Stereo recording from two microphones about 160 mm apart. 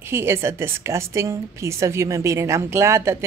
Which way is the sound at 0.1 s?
15° right (ahead or behind).